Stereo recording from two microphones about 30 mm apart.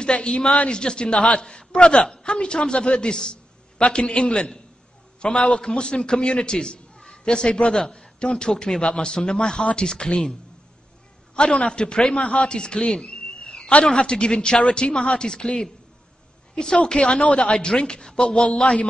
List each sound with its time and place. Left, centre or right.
0.0 s a man's voice: left
3.2 s a sound: left
3.8 s a man's voice: left
11.3 s a man's voice: left; by 18.6 s centre
18.6 s speech: left